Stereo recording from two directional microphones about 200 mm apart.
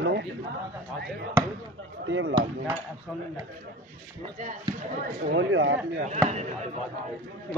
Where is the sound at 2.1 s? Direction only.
70° right (ahead or behind).